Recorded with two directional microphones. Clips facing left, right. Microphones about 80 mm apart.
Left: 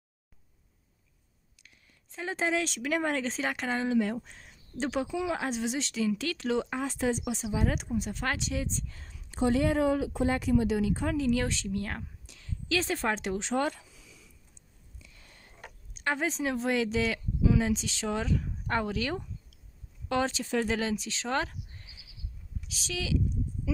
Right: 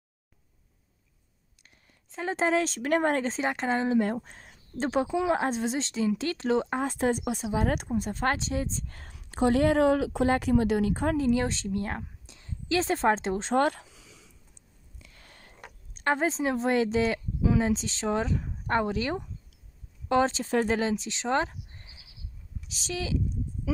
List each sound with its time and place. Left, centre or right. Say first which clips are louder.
2.1 s speech: right 4 dB; right
2.8 s a woman's voice: right 4 dB; right
3.3 s speech: right 4 dB; right
8.9 s a woman's voice: right 4 dB; right
13.6 s a sound: right 5 dB; right
15.0 s a sound: right 3 dB; right
15.9 s speech: right 4 dB; right